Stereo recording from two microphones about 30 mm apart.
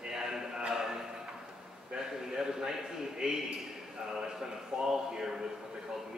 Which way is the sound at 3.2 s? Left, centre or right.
Right.